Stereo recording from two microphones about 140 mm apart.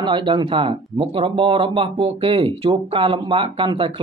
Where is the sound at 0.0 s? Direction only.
35° right (ahead or behind).